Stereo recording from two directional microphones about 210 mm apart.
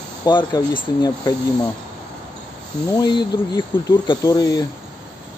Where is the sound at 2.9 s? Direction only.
20° left (ahead or behind).